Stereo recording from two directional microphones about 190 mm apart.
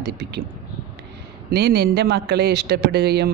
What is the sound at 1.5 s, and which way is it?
Speech, 60° right (ahead or behind).